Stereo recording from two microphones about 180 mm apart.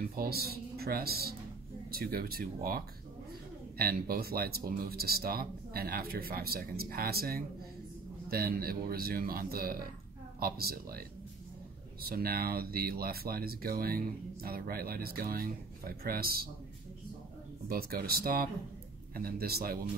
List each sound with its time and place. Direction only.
0.1 s speech: 55° right (ahead or behind)
17.6 s speech: 55° right (ahead or behind)